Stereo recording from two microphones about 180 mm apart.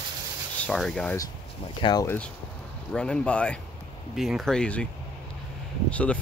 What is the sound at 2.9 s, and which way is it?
Speech, 5° left (ahead or behind).